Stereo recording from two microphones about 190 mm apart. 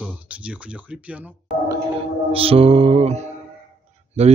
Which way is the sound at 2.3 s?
30° right (ahead or behind).